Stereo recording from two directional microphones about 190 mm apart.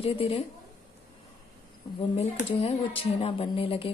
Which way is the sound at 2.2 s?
30° left (ahead or behind).